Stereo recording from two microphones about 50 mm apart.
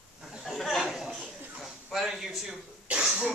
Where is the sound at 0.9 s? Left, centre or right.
Centre.